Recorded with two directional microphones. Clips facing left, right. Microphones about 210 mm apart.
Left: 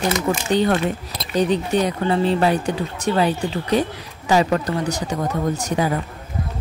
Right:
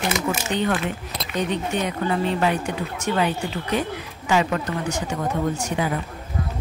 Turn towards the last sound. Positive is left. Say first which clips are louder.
# left 3 dB
turn(degrees=40)  # may be behind; listen again after turning